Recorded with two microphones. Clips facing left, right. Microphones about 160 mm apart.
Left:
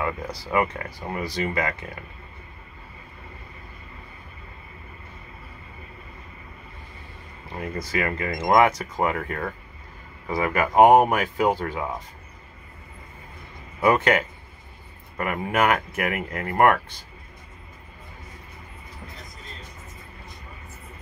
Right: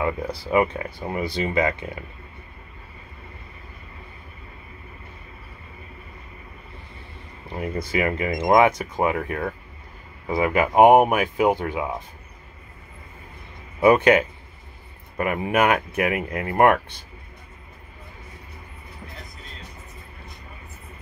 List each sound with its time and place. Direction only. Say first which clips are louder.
0.0 s speech: right 3 dB; 25° right (ahead or behind)
7.5 s speech: right 3 dB; 20° right (ahead or behind)
13.7 s speech: right 4 dB; 15° right (ahead or behind)